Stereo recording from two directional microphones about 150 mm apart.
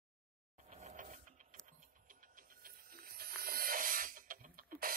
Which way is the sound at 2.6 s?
90° right.